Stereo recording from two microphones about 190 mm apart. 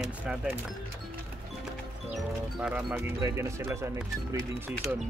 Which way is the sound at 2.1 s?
Centre (ahead or behind).